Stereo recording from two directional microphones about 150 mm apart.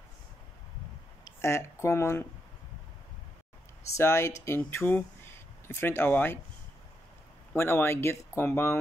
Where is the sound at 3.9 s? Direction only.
20° left (ahead or behind).